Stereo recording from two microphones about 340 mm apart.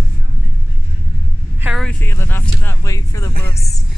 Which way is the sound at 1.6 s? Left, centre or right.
Centre.